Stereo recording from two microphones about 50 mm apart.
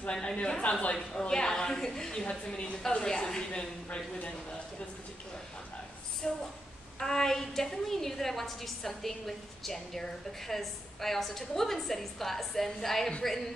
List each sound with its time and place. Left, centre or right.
0.1 s a woman's voice: centre
0.4 s a woman's voice: left
1.1 s a woman's voice: centre
6.2 s a woman's voice: centre